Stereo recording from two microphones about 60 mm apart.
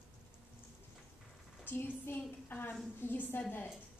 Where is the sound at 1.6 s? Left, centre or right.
Left.